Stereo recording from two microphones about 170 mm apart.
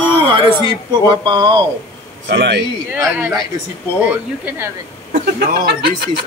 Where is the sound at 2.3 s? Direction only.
85° right.